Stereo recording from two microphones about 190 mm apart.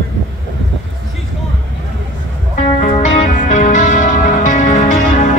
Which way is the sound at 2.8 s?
40° left (ahead or behind).